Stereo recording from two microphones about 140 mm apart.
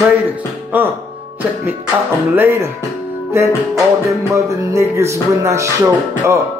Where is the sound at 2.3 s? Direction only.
20° right (ahead or behind).